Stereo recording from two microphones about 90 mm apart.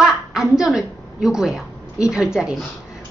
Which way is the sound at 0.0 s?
5° right (ahead or behind).